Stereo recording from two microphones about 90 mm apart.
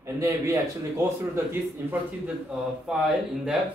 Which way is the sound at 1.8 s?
25° right (ahead or behind).